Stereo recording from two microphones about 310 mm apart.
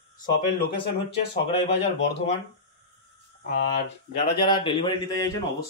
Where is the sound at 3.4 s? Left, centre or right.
Left.